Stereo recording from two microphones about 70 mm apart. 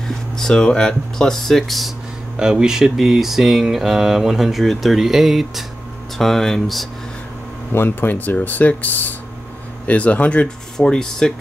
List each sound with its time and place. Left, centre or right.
0.4 s speech: centre
2.3 s speech: centre
7.7 s speech: left; by 11.3 s centre